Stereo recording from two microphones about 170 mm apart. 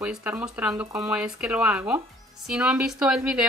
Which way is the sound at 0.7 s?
20° right (ahead or behind).